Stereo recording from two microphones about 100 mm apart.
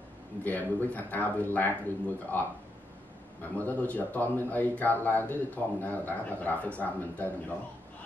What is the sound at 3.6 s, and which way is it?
Speech, 15° left (ahead or behind).